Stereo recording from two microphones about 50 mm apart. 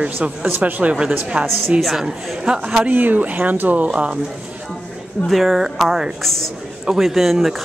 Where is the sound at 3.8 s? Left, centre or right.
Right.